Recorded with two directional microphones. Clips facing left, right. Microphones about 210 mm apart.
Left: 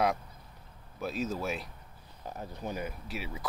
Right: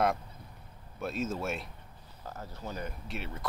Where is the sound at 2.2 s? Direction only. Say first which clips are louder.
Left 3 dB; 15° left (ahead or behind).